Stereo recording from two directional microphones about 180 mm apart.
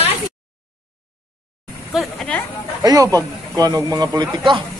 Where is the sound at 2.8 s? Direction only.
20° right (ahead or behind).